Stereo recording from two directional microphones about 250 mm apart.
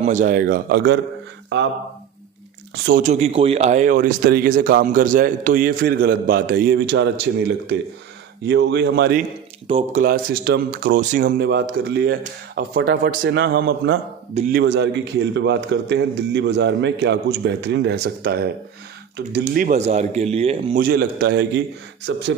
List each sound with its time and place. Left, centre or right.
0.0 s a man's voice: right
2.7 s speech: right
3.0 s a man's voice: right
9.7 s speech: right
10.0 s a man's voice: right
19.5 s speech: right
20.8 s a man's voice: right